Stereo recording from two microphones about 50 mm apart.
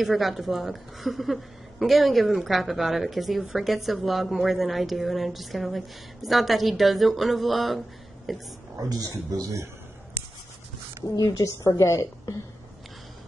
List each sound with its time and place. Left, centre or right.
0.0 s a woman's voice: centre
11.1 s a woman's voice: left